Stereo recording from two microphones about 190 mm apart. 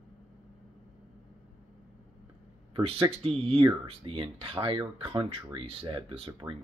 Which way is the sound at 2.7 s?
30° right (ahead or behind).